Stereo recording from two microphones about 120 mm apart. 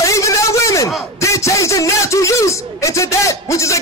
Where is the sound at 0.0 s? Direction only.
25° left (ahead or behind).